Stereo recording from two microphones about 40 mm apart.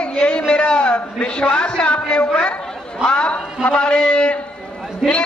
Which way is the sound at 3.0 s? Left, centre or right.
Left.